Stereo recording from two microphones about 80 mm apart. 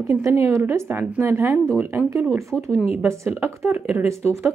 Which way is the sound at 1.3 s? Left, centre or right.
Right.